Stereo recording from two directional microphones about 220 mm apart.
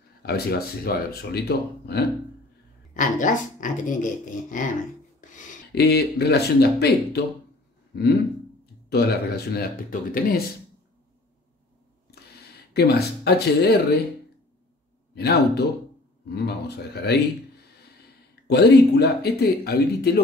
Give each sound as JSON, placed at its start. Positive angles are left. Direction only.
{"t": 0.2, "sound": "speech", "side_deg": 45}
{"t": 2.9, "sound": "speech", "side_deg": 35}
{"t": 8.9, "sound": "speech", "side_deg": 45}
{"t": 12.7, "sound": "speech", "side_deg": 50}
{"t": 15.1, "sound": "speech", "side_deg": 45}
{"t": 18.5, "sound": "speech", "side_deg": 45}